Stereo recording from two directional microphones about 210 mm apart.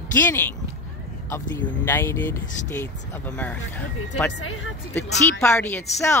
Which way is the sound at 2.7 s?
10° left (ahead or behind).